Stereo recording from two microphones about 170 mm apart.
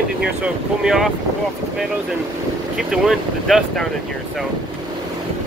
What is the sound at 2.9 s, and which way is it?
Speech, centre (ahead or behind).